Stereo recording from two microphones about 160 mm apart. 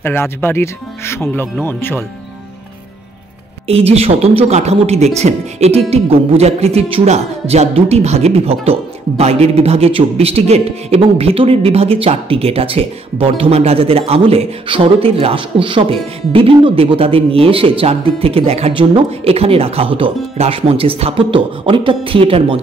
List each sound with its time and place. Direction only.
0.0 s speech: 15° left (ahead or behind)
3.6 s speech: 40° right (ahead or behind)